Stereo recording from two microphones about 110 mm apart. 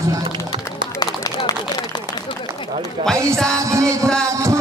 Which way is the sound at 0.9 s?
40° left (ahead or behind).